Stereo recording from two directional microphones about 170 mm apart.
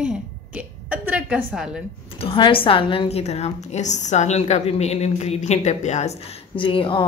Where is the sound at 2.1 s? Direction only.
30° left (ahead or behind).